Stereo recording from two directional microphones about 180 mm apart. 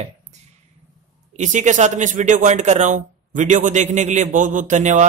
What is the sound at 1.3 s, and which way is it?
A man's voice, 40° right (ahead or behind).